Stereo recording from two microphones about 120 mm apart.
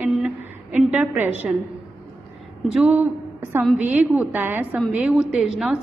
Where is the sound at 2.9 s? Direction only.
20° right (ahead or behind).